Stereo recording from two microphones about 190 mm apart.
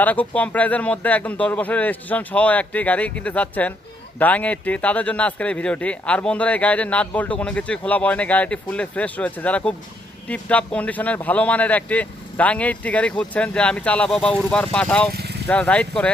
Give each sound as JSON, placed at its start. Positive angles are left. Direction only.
{"t": 0.0, "sound": "speech", "side_deg": 10}
{"t": 15.1, "sound": "vehicle", "side_deg": -60}
{"t": 15.4, "sound": "speech", "side_deg": 10}